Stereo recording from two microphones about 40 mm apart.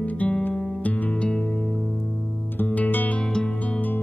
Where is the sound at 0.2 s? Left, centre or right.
Left.